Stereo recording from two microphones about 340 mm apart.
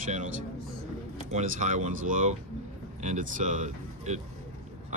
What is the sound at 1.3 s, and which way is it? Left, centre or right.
Speech, right.